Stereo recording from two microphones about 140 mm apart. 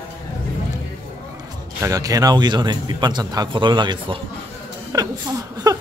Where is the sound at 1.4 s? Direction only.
25° right (ahead or behind).